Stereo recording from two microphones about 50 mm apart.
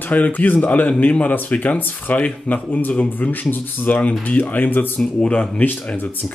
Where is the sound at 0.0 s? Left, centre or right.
Left.